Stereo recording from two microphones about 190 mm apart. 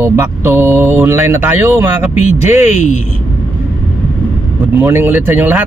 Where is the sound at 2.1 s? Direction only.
35° left (ahead or behind).